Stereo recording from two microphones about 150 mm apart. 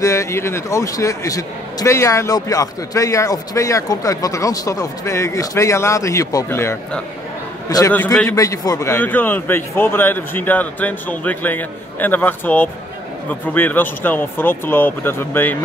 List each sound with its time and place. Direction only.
0.0 s a man's voice: 20° left (ahead or behind)